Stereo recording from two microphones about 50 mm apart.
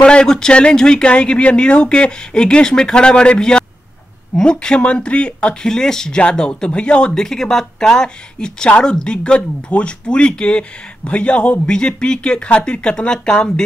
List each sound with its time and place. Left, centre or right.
0.0 s speech: centre
7.1 s speech: centre